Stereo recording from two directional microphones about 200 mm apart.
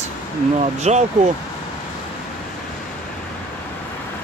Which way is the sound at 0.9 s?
35° right (ahead or behind).